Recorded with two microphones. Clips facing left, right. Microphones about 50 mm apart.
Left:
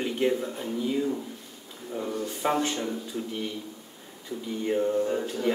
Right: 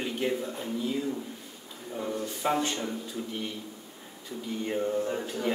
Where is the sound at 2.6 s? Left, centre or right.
Centre.